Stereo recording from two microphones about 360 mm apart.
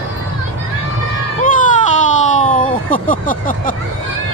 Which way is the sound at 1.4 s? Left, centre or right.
Left.